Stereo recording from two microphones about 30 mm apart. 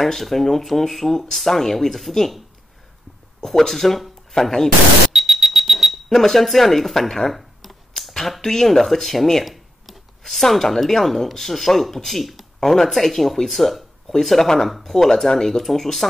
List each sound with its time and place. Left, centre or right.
0.0 s speech: centre
3.3 s speech: centre
5.1 s alarm: centre
6.0 s speech: centre
8.2 s speech: centre
14.4 s speech: centre
14.7 s speech: centre
15.2 s speech: centre